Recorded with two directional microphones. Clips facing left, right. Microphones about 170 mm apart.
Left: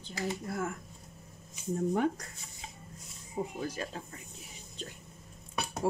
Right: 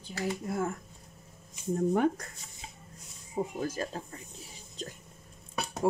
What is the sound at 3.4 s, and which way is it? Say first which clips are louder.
Speech: right 3 dB; 50° right (ahead or behind).